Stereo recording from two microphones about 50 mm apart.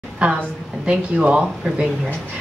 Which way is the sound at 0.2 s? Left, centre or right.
Right.